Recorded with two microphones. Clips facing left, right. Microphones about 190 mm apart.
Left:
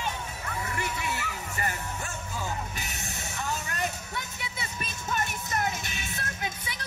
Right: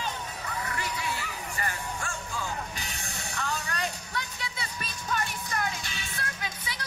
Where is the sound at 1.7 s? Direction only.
20° left (ahead or behind).